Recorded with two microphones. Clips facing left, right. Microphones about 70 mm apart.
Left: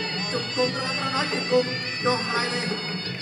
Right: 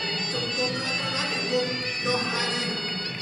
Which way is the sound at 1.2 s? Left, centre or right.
Left.